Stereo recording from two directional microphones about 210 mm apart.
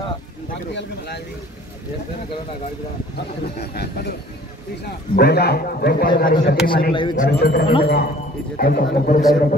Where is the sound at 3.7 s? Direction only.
50° left (ahead or behind).